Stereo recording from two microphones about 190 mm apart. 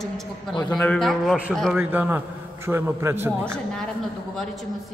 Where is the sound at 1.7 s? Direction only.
10° right (ahead or behind).